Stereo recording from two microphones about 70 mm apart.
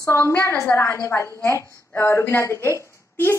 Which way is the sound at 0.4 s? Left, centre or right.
Left.